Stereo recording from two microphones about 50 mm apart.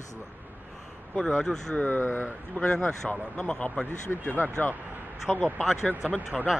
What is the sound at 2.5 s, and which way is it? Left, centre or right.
Speech, left.